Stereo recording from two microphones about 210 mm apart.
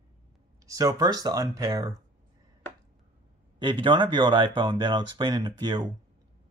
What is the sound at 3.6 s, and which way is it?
Speech, 20° right (ahead or behind).